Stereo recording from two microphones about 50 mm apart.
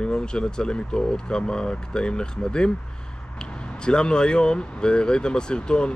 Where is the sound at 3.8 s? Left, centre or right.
Centre.